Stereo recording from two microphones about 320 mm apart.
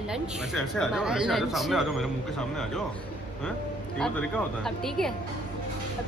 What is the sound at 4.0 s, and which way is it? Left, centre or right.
Speech, centre.